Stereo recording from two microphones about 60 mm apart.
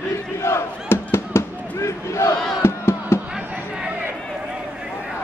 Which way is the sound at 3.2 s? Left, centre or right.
Centre.